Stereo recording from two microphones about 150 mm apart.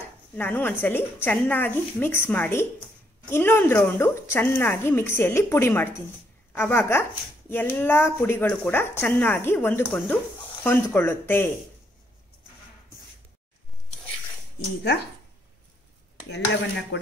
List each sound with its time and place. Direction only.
0.3 s speech: 15° left (ahead or behind)